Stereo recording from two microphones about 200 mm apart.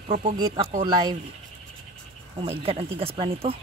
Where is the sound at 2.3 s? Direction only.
30° right (ahead or behind).